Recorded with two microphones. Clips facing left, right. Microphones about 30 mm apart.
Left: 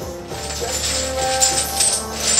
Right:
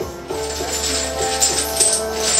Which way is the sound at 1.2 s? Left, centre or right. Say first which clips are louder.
Left 3 dB; centre.